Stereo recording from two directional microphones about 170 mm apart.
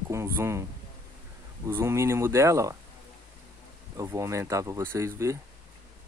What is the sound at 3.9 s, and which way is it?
Speech, 20° right (ahead or behind).